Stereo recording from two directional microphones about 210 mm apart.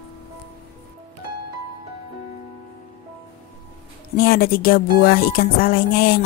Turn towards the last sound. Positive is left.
turn(degrees=45)  # may be behind; listen again after turning